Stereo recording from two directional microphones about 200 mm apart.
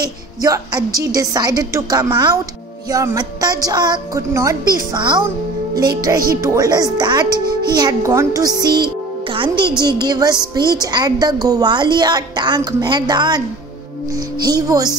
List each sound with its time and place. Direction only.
0.0 s a woman's voice: 20° right (ahead or behind)
14.4 s a woman's voice: 20° right (ahead or behind)